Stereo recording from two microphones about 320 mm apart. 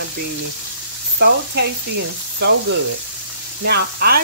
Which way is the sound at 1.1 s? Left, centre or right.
Right.